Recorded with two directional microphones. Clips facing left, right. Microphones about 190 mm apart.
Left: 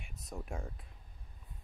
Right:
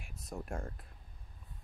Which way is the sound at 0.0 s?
Centre (ahead or behind).